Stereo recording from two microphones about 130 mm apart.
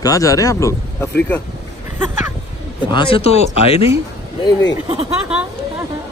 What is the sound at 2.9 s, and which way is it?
Speech, 50° left (ahead or behind).